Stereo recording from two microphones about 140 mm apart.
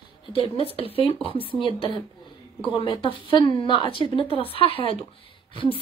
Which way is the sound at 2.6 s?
35° left (ahead or behind).